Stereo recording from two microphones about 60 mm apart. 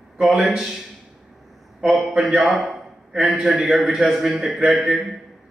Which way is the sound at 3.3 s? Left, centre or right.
Centre.